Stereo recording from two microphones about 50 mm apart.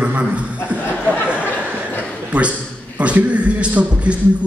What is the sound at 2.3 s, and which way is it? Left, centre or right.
Speech, right.